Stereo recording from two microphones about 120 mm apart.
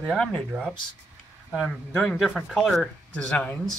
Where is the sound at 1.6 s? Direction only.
5° left (ahead or behind).